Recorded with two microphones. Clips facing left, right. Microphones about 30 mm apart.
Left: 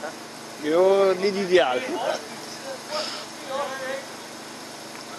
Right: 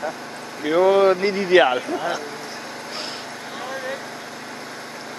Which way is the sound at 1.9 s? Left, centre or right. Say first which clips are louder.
Right 2 dB; centre.